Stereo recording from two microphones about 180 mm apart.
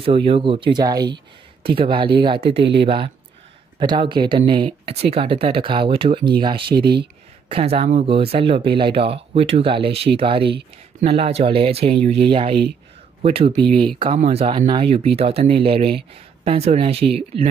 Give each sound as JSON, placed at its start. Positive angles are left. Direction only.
{"t": 0.0, "sound": "speech", "side_deg": -30}
{"t": 2.6, "sound": "speech", "side_deg": -70}
{"t": 3.8, "sound": "speech", "side_deg": -25}
{"t": 6.7, "sound": "speech", "side_deg": -65}
{"t": 7.4, "sound": "speech", "side_deg": -30}